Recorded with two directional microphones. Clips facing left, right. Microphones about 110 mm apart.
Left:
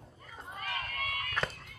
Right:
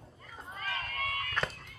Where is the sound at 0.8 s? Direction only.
30° right (ahead or behind).